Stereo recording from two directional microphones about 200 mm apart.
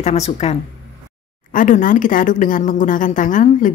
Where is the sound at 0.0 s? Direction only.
35° left (ahead or behind).